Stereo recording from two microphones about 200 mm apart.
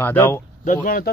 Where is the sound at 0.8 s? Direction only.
45° left (ahead or behind).